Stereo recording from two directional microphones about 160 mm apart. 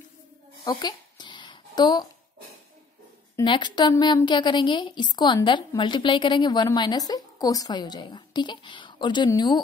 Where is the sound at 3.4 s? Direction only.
30° left (ahead or behind).